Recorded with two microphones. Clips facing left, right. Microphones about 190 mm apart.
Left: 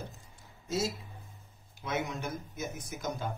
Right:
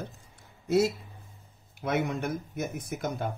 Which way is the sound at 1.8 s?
60° right (ahead or behind).